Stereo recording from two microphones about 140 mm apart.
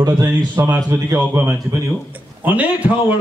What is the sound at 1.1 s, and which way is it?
Speech, 5° right (ahead or behind).